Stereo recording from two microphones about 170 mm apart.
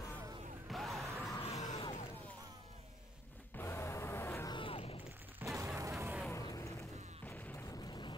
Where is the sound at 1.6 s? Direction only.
40° left (ahead or behind).